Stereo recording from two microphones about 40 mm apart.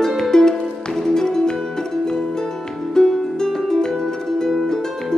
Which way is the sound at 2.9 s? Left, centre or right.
Centre.